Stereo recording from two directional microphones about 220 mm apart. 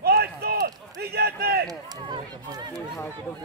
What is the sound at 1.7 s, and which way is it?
Speech, 20° right (ahead or behind).